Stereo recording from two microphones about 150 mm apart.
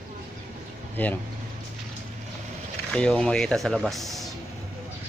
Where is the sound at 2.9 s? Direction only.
5° left (ahead or behind).